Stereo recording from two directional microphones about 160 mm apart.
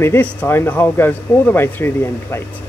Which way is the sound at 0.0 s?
10° left (ahead or behind).